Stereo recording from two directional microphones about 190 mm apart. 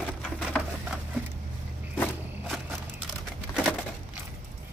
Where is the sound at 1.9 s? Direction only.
Centre (ahead or behind).